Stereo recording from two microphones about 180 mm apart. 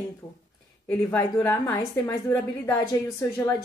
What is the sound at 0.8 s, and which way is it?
Speech, 10° left (ahead or behind).